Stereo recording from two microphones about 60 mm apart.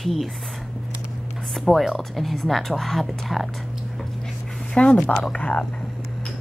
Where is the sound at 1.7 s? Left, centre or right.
Centre.